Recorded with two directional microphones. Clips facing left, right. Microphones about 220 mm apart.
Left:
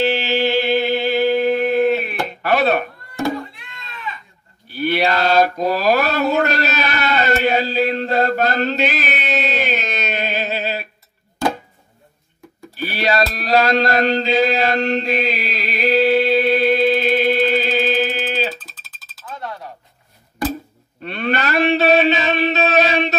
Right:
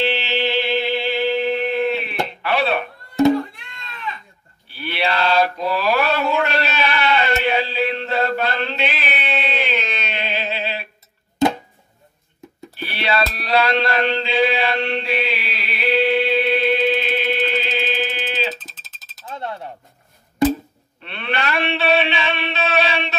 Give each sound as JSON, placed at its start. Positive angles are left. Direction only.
{"t": 0.0, "sound": "music", "side_deg": 45}
{"t": 4.6, "sound": "mantra", "side_deg": 45}
{"t": 11.4, "sound": "chopping", "side_deg": -20}
{"t": 12.7, "sound": "a sound", "side_deg": 40}
{"t": 18.6, "sound": "a sound", "side_deg": -20}
{"t": 21.0, "sound": "a man's voice", "side_deg": 40}